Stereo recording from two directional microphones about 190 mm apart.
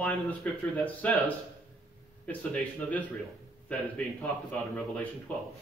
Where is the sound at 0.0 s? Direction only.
10° left (ahead or behind).